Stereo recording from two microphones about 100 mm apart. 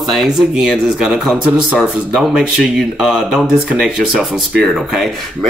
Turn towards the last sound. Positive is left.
turn(degrees=0)  # may be behind; listen again after turning